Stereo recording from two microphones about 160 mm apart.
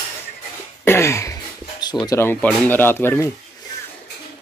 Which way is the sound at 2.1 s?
10° left (ahead or behind).